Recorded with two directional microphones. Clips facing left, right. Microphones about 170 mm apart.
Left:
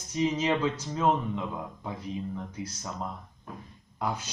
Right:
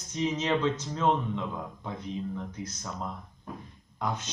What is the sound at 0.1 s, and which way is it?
Speech, 10° left (ahead or behind).